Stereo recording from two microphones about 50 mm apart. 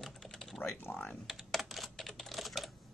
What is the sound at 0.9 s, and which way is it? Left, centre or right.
Speech, left.